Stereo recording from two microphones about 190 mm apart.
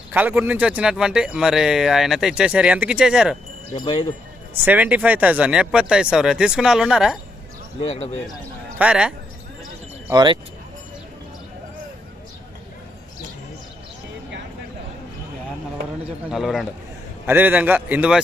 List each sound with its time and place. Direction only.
0.1 s speech: 10° right (ahead or behind)
3.7 s speech: 25° left (ahead or behind)
4.6 s speech: 10° right (ahead or behind)
7.9 s a man's voice: 35° left (ahead or behind)
8.7 s speech: 5° right (ahead or behind)
10.1 s speech: 25° right (ahead or behind)
16.3 s a man's voice: centre (ahead or behind)